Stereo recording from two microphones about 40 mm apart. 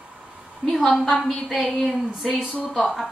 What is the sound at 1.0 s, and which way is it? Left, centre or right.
A woman's voice, centre.